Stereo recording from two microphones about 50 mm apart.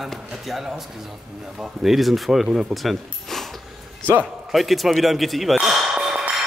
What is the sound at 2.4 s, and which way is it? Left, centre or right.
Speech, centre.